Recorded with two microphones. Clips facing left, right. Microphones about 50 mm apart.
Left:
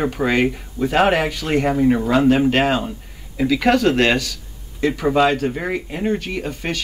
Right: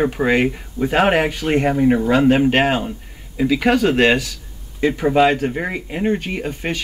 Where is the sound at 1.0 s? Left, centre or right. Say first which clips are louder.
Right 1 dB; right.